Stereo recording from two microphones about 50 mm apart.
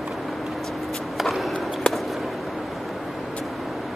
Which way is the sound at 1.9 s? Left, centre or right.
Centre.